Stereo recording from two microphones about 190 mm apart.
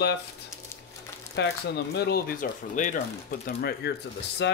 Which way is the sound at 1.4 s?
60° left (ahead or behind).